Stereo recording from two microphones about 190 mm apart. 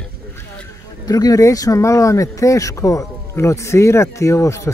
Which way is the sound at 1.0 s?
20° left (ahead or behind).